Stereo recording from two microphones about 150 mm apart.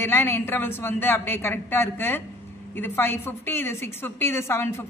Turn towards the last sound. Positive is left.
turn(degrees=15)  # may be behind; listen again after turning